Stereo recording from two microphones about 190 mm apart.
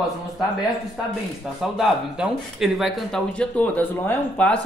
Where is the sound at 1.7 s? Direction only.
5° right (ahead or behind).